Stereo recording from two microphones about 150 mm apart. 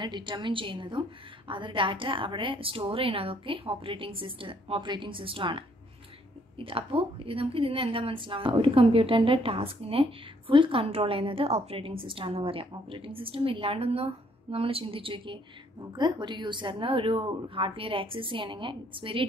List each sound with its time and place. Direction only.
0.0 s a woman's voice: 30° right (ahead or behind)